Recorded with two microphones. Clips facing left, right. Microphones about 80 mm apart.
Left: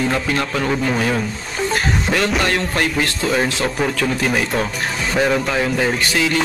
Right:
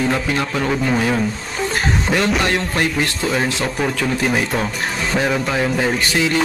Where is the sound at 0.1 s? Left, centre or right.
Centre.